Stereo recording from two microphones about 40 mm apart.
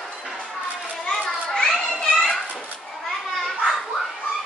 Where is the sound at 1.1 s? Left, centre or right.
Centre.